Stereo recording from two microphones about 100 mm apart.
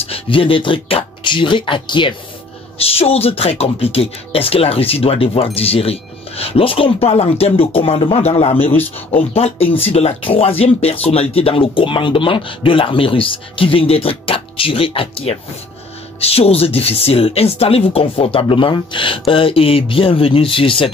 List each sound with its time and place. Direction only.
0.0 s speech: 65° left (ahead or behind)
2.8 s speech: 80° left
8.3 s a man's voice: 90° left; by 10.5 s 75° left (ahead or behind)
10.6 s speech: 90° left; by 15.3 s 70° left (ahead or behind)
16.2 s speech: 90° left; by 20.9 s 65° left (ahead or behind)